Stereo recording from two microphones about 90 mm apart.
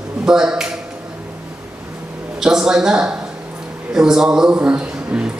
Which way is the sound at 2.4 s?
5° right (ahead or behind).